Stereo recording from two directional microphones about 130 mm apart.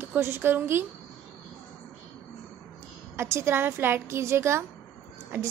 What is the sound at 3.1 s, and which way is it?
A woman's voice, 20° right (ahead or behind).